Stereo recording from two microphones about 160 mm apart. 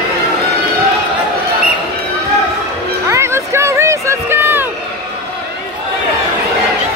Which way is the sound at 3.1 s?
15° right (ahead or behind).